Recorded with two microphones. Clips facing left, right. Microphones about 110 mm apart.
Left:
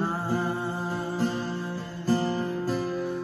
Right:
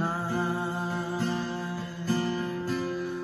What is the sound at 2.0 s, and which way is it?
Music, 35° left (ahead or behind).